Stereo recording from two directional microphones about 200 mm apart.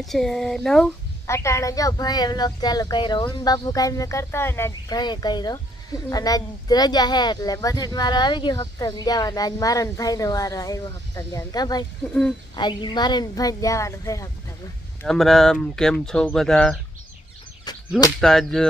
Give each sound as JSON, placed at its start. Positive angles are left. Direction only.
{"t": 0.0, "sound": "speech", "side_deg": 0}
{"t": 1.2, "sound": "a woman's voice", "side_deg": 15}
{"t": 15.0, "sound": "speech", "side_deg": 0}
{"t": 17.7, "sound": "a sound", "side_deg": 20}
{"t": 18.2, "sound": "speech", "side_deg": 0}